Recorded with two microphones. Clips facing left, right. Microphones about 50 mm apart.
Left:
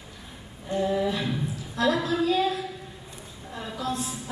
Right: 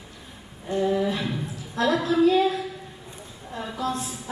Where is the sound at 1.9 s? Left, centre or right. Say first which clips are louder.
Right 5 dB; right.